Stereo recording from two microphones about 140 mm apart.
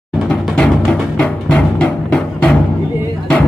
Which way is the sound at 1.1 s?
5° left (ahead or behind).